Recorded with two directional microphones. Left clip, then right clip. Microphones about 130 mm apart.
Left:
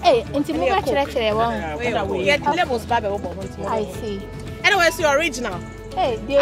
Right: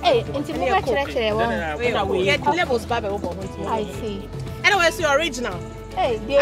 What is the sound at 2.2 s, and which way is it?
Speech, 55° left (ahead or behind).